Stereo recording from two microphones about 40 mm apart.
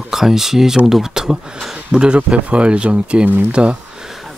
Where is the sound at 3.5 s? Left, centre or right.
Right.